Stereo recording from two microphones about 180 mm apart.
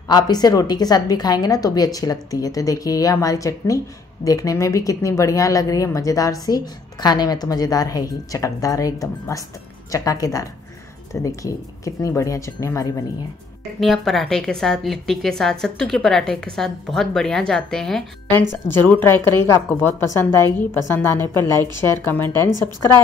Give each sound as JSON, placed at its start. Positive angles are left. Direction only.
{"t": 0.1, "sound": "a woman's voice", "side_deg": 20}
{"t": 13.7, "sound": "a woman's voice", "side_deg": 0}
{"t": 18.5, "sound": "a woman's voice", "side_deg": 15}